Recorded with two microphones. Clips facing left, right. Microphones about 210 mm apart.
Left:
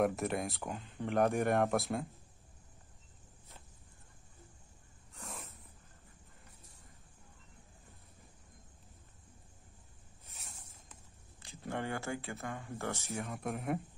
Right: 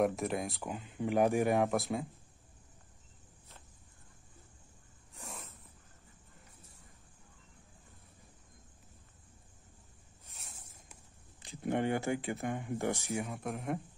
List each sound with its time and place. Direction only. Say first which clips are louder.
0.0 s speech: right 1 dB; centre (ahead or behind)
11.4 s speech: right 7 dB; 20° right (ahead or behind)
13.2 s speech: even; centre (ahead or behind)